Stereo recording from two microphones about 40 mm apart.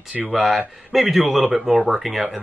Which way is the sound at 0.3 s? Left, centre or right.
Centre.